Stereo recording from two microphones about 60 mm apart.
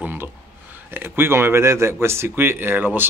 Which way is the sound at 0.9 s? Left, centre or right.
Right.